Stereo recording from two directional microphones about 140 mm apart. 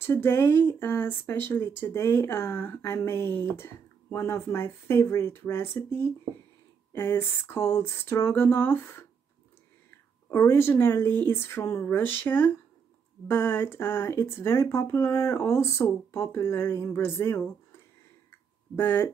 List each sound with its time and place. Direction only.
0.0 s speech: 15° left (ahead or behind)
18.8 s speech: 15° left (ahead or behind)